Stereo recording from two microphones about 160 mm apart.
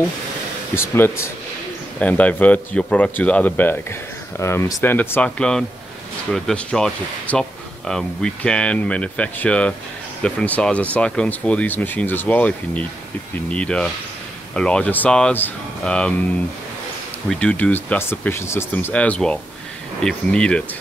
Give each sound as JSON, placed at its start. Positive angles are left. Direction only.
{"t": 0.7, "sound": "speech", "side_deg": 15}
{"t": 17.3, "sound": "speech", "side_deg": 5}